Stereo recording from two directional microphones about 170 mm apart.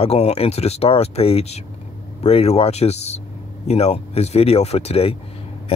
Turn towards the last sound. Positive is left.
turn(degrees=35)  # may be behind; listen again after turning